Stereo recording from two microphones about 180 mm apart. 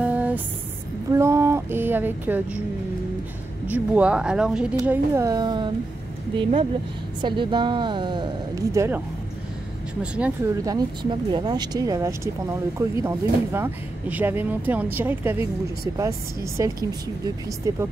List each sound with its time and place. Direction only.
0.0 s a sound: 10° right (ahead or behind)
3.7 s speech: 5° right (ahead or behind)
10.2 s speech: 10° right (ahead or behind)
10.6 s speech: 20° right (ahead or behind)